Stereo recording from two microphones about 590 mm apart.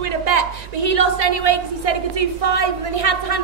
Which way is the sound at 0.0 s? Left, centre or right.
Right.